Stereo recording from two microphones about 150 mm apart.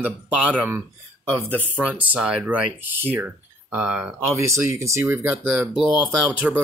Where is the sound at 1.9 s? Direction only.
10° right (ahead or behind).